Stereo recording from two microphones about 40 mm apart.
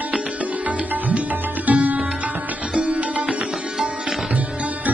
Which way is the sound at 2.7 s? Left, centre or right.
Right.